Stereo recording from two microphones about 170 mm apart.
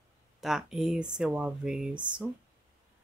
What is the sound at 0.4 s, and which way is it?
Speech, 5° right (ahead or behind).